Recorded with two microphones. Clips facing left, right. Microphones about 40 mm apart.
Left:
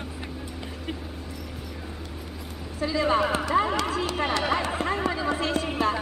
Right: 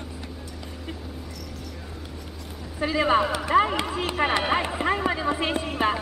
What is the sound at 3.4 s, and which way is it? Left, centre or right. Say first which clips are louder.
Run: right 2 dB; right.